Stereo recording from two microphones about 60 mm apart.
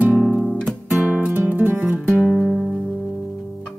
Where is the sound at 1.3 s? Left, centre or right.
Right.